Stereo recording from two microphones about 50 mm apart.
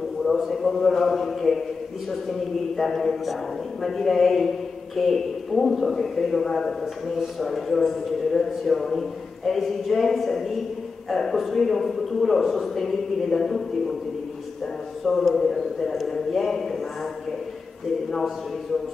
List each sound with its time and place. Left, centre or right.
0.2 s a sound: centre
2.7 s a man's voice: centre
15.0 s a man's voice: centre